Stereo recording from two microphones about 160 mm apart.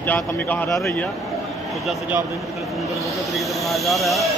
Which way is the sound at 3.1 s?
Centre (ahead or behind).